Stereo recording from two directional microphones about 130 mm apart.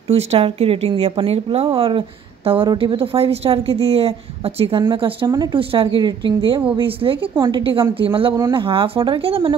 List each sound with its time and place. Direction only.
0.1 s a woman's voice: 50° right (ahead or behind); by 5.6 s 30° right (ahead or behind)
5.6 s a woman's voice: 45° right (ahead or behind)
8.4 s a woman's voice: 30° right (ahead or behind)
8.6 s speech: 45° right (ahead or behind)